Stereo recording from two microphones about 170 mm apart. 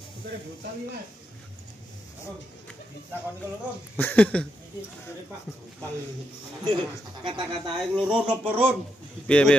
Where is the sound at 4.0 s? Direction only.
10° left (ahead or behind).